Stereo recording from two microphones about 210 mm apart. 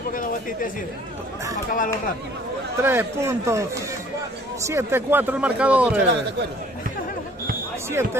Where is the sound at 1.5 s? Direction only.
40° left (ahead or behind).